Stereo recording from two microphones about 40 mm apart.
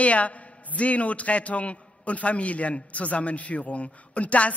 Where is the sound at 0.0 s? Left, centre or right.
Left.